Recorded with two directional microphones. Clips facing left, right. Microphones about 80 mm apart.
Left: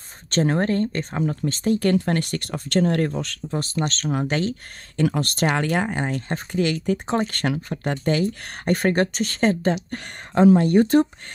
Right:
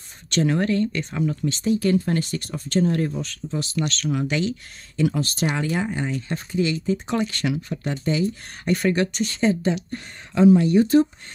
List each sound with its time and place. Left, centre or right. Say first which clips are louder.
0.3 s speech: even; left
7.1 s speech: left 1 dB; left